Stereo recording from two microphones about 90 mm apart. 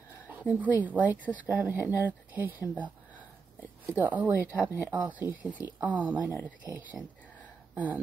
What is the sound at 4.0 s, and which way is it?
Speech, 20° right (ahead or behind).